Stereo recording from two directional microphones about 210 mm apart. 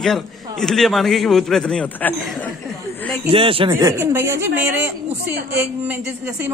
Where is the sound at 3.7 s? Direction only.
10° right (ahead or behind).